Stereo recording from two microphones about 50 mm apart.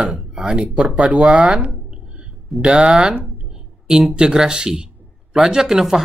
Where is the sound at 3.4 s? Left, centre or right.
Centre.